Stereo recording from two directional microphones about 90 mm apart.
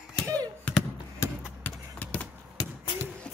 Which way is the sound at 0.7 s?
15° left (ahead or behind).